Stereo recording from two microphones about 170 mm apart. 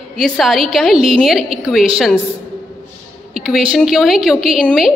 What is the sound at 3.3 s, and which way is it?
A woman's voice, 5° right (ahead or behind).